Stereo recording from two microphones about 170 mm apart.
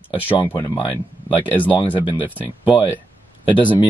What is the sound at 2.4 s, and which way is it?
Speech, 10° right (ahead or behind).